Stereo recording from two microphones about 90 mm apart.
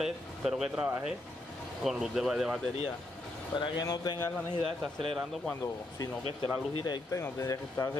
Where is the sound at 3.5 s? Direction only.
55° left (ahead or behind).